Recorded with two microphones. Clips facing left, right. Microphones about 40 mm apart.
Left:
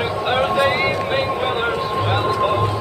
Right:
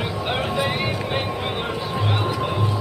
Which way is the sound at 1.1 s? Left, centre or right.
Left.